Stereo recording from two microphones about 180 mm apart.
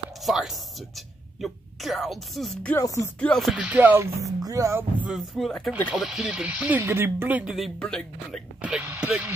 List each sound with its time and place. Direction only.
0.2 s speech: centre (ahead or behind)
2.8 s music: 20° left (ahead or behind)
3.2 s speech: 5° left (ahead or behind); by 4.8 s 15° right (ahead or behind)
5.0 s speech: centre (ahead or behind)
8.5 s speech: 5° right (ahead or behind)